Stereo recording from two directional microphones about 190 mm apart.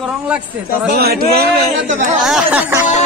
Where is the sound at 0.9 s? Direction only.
55° right (ahead or behind).